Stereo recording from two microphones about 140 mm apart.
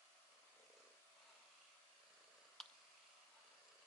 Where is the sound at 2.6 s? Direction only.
Centre (ahead or behind).